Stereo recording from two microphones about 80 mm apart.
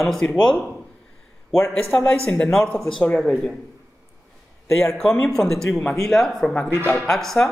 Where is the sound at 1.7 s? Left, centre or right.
Centre.